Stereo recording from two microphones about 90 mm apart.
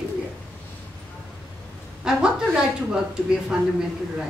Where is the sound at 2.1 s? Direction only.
10° right (ahead or behind).